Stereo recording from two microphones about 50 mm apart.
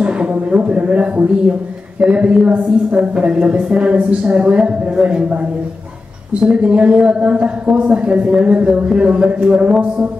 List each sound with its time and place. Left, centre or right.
0.0 s music: right
2.0 s speech: right
6.5 s speech: right